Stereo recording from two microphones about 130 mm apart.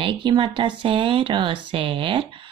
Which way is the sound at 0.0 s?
40° right (ahead or behind).